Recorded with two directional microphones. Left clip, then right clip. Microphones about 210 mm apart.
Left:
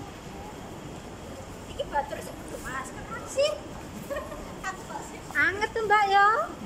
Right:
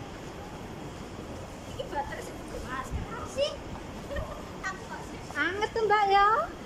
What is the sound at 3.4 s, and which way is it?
Speech, centre (ahead or behind).